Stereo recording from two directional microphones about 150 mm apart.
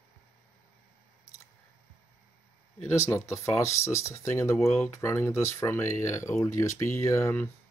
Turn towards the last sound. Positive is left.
turn(degrees=15)  # may be behind; listen again after turning